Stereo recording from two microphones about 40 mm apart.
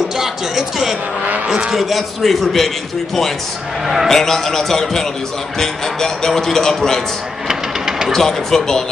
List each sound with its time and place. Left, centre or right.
0.2 s speech: centre
1.8 s a man's voice: centre
3.8 s speech: centre
4.1 s speech: centre
7.4 s a sound: centre
8.1 s speech: centre